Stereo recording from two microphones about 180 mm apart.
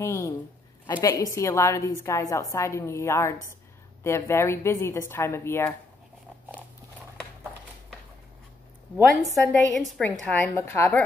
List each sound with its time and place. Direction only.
0.0 s a woman's voice: 15° left (ahead or behind)
9.1 s a woman's voice: centre (ahead or behind)